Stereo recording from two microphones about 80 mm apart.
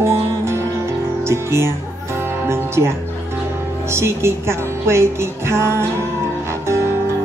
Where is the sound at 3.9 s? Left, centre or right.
Right.